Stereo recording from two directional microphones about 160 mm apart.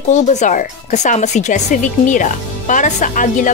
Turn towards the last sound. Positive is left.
turn(degrees=55)  # may be behind; listen again after turning